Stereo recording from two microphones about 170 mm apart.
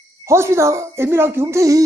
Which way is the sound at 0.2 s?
15° right (ahead or behind).